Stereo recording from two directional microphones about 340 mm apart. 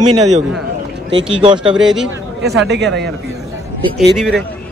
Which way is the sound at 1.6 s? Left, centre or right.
Centre.